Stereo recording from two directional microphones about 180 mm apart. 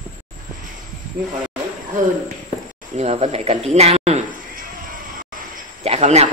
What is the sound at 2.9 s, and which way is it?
Speech, 40° right (ahead or behind).